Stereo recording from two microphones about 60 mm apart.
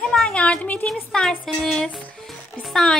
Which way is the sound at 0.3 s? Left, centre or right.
Centre.